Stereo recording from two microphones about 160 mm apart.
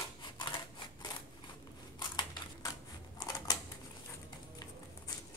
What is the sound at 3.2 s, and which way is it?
Typewriter, 25° left (ahead or behind).